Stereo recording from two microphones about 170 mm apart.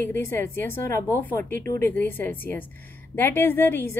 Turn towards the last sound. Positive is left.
turn(degrees=15)  # may be behind; listen again after turning